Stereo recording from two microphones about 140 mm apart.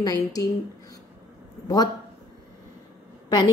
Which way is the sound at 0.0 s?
25° left (ahead or behind).